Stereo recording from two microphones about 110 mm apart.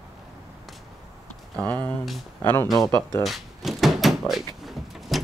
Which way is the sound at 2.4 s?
25° left (ahead or behind).